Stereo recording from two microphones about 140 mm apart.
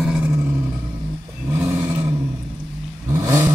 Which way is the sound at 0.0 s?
5° right (ahead or behind).